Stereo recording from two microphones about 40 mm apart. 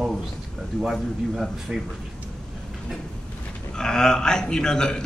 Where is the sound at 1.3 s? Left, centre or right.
Centre.